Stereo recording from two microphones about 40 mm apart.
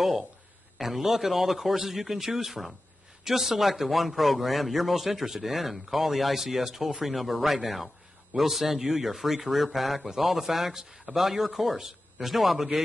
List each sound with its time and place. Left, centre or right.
0.0 s a man's voice: centre